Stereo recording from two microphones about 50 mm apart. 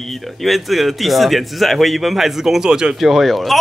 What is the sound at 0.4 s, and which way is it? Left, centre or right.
Speech, centre.